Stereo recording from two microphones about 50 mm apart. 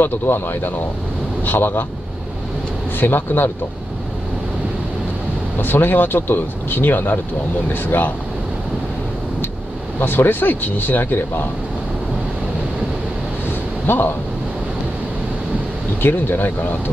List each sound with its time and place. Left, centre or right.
0.0 s speech: left
3.0 s speech: left
5.6 s speech: left
9.9 s speech: left
13.8 s speech: left
16.0 s speech: left